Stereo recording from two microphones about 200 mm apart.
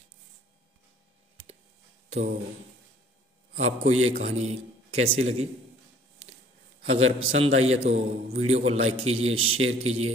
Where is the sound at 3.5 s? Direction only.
35° right (ahead or behind).